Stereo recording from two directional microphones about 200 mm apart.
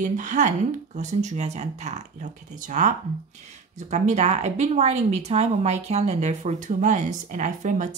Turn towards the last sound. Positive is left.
turn(degrees=-35)  # may be behind; listen again after turning